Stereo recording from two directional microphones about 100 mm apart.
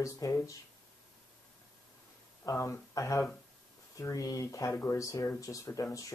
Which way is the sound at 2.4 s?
30° left (ahead or behind).